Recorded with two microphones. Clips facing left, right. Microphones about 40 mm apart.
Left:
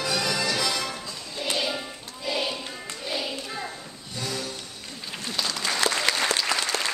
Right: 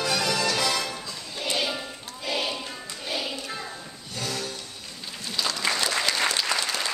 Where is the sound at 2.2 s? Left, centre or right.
Centre.